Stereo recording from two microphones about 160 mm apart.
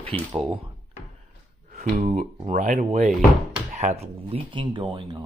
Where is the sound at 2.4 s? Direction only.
50° right (ahead or behind).